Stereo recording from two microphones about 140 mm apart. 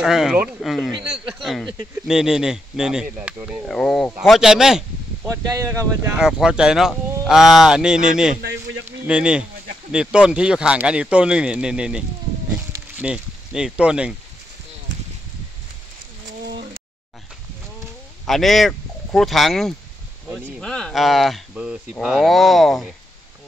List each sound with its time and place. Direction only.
0.0 s speech: 5° right (ahead or behind)
3.6 s speech: 5° left (ahead or behind)
5.3 s speech: 25° right (ahead or behind)
6.1 s speech: 5° right (ahead or behind)
13.0 s speech: 5° right (ahead or behind)
18.2 s speech: centre (ahead or behind)